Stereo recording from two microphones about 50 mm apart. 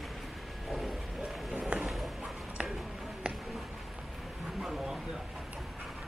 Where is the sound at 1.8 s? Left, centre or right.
Centre.